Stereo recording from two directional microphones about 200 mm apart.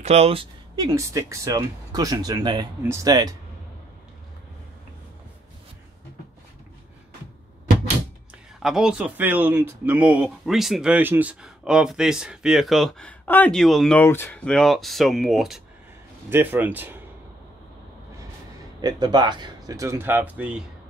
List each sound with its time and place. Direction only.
0.0 s speech: 30° right (ahead or behind)
0.8 s speech: 15° right (ahead or behind)
8.6 s speech: 5° right (ahead or behind)
18.8 s speech: 20° right (ahead or behind)